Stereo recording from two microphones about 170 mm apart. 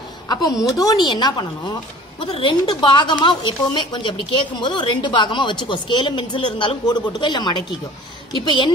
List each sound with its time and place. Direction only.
0.3 s a woman's voice: 20° left (ahead or behind)